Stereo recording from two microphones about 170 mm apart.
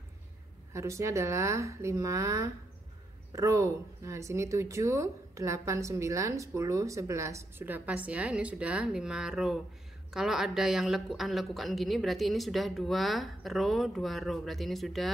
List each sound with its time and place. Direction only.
0.7 s speech: 15° right (ahead or behind); by 15.0 s centre (ahead or behind)